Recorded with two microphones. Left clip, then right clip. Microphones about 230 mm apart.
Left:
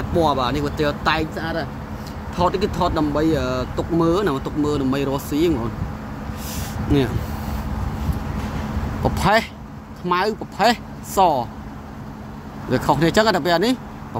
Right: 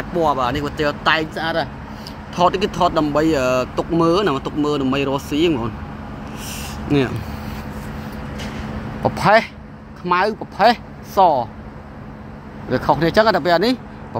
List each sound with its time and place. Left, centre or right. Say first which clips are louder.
0.2 s speech: right 1 dB; left
1.4 s speech: right 5 dB; centre
9.0 s speech: right 4 dB; centre
12.6 s speech: right 1 dB; centre